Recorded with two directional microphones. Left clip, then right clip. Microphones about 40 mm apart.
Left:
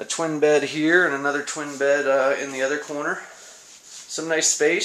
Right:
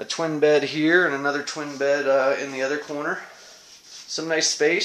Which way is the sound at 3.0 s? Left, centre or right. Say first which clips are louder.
Left 1 dB; centre.